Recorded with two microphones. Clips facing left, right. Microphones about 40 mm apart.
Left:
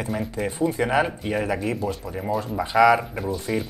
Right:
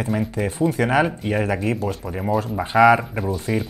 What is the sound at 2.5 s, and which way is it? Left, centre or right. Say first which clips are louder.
Speech: right 2 dB; right.